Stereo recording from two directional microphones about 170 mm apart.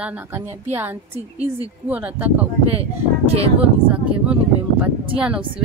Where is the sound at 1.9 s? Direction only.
10° right (ahead or behind).